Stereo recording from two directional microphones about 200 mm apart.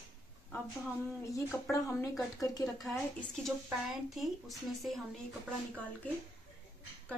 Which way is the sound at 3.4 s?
Centre (ahead or behind).